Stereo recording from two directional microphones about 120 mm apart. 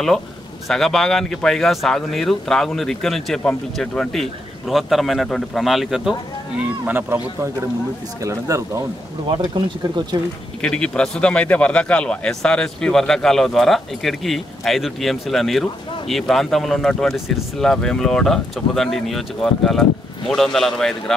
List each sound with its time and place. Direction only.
0.7 s speech: 5° left (ahead or behind)
6.9 s speech: 15° right (ahead or behind)
8.2 s speech: 25° right (ahead or behind)
9.6 s speech: 40° right (ahead or behind)
10.6 s speech: 5° left (ahead or behind)